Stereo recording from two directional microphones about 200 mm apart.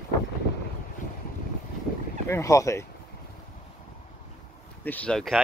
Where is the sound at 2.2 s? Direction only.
15° left (ahead or behind).